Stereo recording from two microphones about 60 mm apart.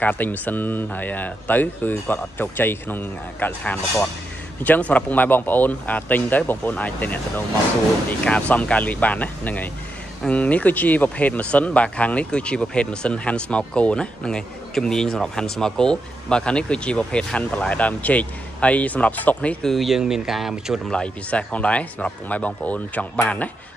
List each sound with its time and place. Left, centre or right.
0.0 s speech: left
19.6 s speech: centre
20.9 s speech: centre